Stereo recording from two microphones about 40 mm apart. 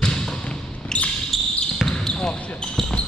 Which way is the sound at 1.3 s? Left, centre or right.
Centre.